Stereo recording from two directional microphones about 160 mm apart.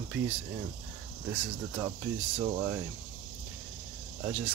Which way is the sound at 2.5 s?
15° right (ahead or behind).